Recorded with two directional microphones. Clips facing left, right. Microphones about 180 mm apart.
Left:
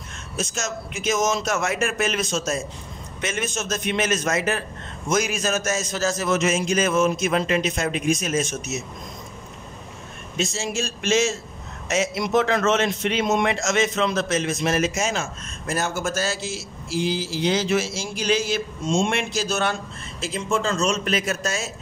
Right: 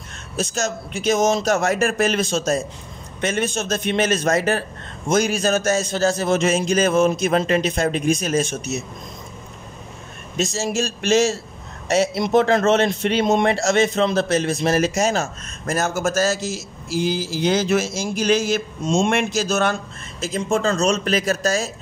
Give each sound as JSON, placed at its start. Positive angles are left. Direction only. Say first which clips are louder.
{"t": 0.4, "sound": "a man's voice", "louder": "right 5 dB", "side_deg": -35}
{"t": 10.3, "sound": "a man's voice", "louder": "right 4 dB", "side_deg": -40}